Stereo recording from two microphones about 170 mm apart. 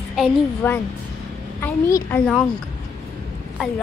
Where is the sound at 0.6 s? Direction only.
10° left (ahead or behind).